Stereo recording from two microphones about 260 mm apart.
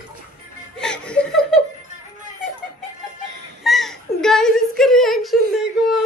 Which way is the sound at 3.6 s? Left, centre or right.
Centre.